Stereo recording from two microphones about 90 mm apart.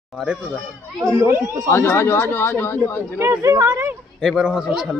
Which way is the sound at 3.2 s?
35° right (ahead or behind).